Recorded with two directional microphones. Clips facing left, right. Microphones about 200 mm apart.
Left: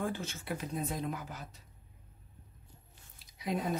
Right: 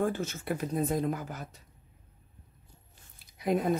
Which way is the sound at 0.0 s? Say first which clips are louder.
Right 6 dB; 45° right (ahead or behind).